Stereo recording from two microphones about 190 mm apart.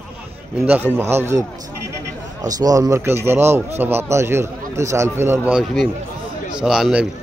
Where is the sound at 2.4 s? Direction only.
20° right (ahead or behind).